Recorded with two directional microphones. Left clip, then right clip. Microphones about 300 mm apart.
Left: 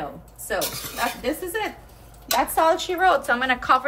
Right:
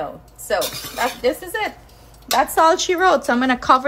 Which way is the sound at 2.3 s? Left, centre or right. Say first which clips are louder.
Right 5 dB; right.